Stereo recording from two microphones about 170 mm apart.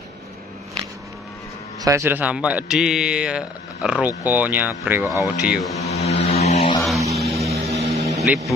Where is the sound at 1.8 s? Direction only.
15° right (ahead or behind).